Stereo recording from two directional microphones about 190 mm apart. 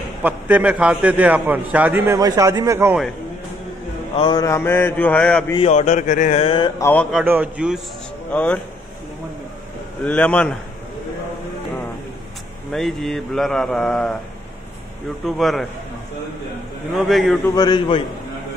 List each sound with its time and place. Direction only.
0.2 s a man's voice: 5° right (ahead or behind)
4.2 s a man's voice: 20° left (ahead or behind); by 5.4 s 5° left (ahead or behind)
5.6 s speech: 35° left (ahead or behind)
6.8 s a man's voice: 10° left (ahead or behind)
7.1 s speech: 5° right (ahead or behind)
8.3 s speech: 5° left (ahead or behind)
10.0 s a man's voice: 5° left (ahead or behind)
12.7 s speech: centre (ahead or behind)
15.2 s speech: centre (ahead or behind)
16.9 s speech: centre (ahead or behind)
17.6 s a man's voice: 25° left (ahead or behind)